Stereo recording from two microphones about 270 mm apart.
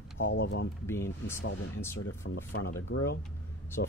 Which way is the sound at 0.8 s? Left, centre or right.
Centre.